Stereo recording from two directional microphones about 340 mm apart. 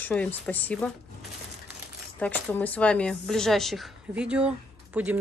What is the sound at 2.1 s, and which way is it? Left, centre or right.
A woman's voice, centre.